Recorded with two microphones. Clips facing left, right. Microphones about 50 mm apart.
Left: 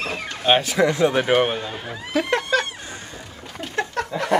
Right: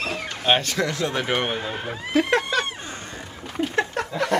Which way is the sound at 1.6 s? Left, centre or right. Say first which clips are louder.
Right 1 dB; right.